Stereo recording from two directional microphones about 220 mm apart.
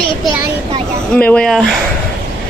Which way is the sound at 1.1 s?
5° left (ahead or behind).